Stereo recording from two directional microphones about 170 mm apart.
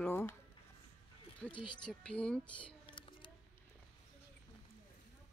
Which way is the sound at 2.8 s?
30° left (ahead or behind).